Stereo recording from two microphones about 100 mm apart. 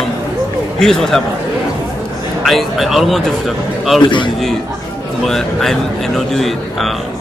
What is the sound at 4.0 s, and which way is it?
Speech, 55° left (ahead or behind).